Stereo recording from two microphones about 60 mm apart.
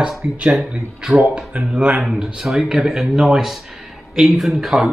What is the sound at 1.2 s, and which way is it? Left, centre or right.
Speech, centre.